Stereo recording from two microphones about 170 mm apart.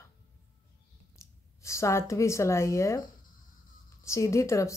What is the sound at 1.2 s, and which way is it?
Speech, 15° left (ahead or behind).